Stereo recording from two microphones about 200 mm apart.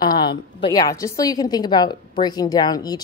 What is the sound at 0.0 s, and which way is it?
A woman's voice, 20° left (ahead or behind).